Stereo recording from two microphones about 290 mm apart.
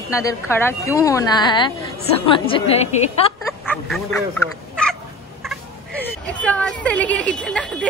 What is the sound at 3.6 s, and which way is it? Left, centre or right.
Speech, centre.